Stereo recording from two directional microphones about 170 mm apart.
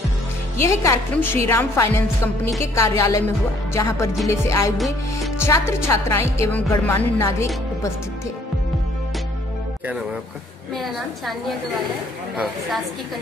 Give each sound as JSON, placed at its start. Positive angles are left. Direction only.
{"t": 0.6, "sound": "a woman's voice", "side_deg": 15}
{"t": 3.0, "sound": "music", "side_deg": 20}
{"t": 3.7, "sound": "a woman's voice", "side_deg": 15}
{"t": 4.7, "sound": "a woman's voice", "side_deg": 0}
{"t": 5.4, "sound": "a woman's voice", "side_deg": 15}
{"t": 10.8, "sound": "a woman's voice", "side_deg": 0}